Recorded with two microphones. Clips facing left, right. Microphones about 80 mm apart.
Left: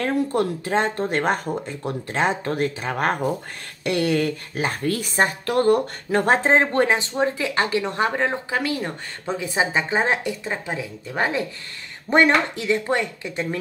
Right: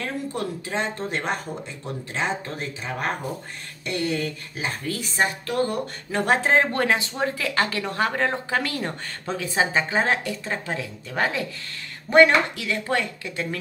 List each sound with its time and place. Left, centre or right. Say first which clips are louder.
0.0 s a woman's voice: left 7 dB; left
3.8 s a woman's voice: left 5 dB; left
6.2 s a woman's voice: left 1 dB; left